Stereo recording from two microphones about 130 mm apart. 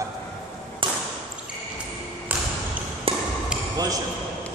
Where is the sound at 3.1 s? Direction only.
45° right (ahead or behind).